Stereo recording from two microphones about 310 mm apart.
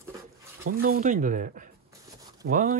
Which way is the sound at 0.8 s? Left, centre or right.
Right.